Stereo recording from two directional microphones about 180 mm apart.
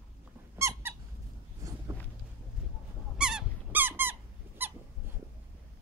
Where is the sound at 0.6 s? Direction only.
15° right (ahead or behind).